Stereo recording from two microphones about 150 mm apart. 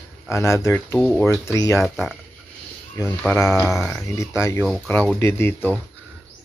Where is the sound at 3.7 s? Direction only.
5° left (ahead or behind).